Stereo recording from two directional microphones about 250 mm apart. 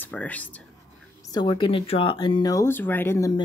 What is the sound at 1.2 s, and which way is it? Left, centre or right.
Speech, centre.